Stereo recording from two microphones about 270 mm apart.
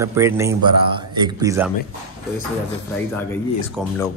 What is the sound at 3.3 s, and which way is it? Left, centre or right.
Speech, centre.